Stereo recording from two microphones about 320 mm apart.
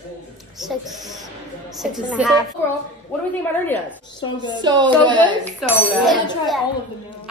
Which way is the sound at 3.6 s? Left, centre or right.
Centre.